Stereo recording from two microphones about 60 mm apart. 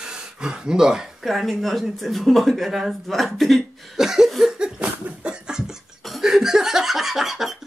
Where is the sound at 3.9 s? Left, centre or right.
Centre.